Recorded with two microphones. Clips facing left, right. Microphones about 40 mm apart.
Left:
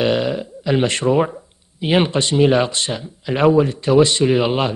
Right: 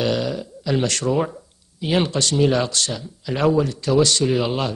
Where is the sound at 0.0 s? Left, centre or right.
Left.